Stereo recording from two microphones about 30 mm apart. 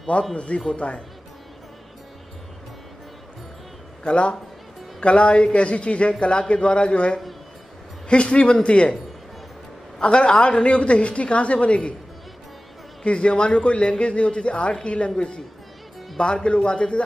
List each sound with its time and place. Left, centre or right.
0.1 s a man's voice: left
4.0 s a man's voice: left
9.9 s a man's voice: left
13.0 s a man's voice: left
16.4 s a man's voice: left